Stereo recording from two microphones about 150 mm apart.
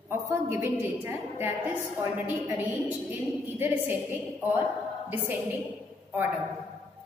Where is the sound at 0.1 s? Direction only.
15° right (ahead or behind).